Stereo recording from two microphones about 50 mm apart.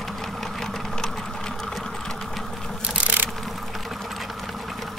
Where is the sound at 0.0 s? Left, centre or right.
Centre.